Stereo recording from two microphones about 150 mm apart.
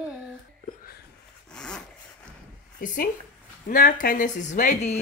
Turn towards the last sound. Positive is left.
turn(degrees=55)  # may be behind; listen again after turning